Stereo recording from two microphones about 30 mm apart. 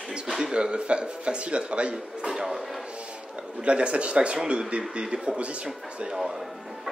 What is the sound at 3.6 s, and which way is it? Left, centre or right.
Speech, right.